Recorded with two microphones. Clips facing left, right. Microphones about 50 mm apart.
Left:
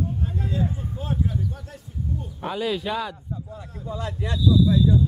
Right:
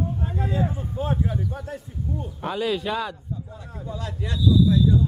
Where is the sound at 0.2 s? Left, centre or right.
Centre.